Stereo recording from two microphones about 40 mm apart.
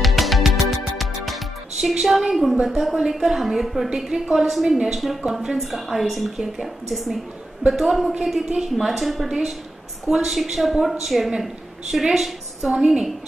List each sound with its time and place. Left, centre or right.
0.0 s music: centre
2.0 s a woman's voice: centre